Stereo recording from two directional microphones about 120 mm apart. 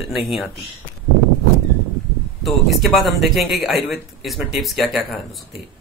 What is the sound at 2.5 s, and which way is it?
Speech, centre (ahead or behind).